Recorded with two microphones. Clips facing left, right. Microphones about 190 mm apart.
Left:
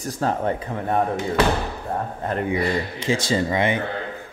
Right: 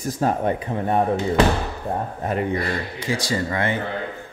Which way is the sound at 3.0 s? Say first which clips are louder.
Left 2 dB; 25° left (ahead or behind).